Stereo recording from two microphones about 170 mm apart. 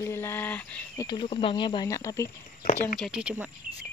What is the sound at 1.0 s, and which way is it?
Speech, 25° left (ahead or behind).